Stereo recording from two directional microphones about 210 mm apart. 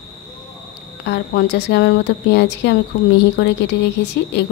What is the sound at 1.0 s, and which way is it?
A woman's voice, 50° left (ahead or behind).